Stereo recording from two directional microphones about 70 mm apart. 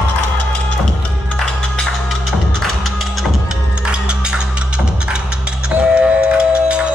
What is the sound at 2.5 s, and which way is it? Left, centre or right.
Music, centre.